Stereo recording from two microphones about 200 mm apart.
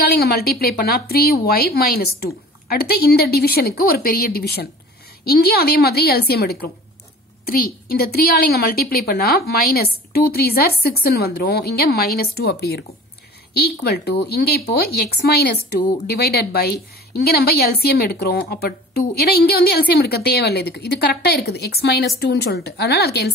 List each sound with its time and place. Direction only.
0.0 s a woman's voice: 50° left (ahead or behind)